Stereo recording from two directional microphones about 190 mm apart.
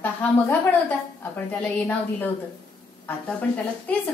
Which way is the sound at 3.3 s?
10° left (ahead or behind).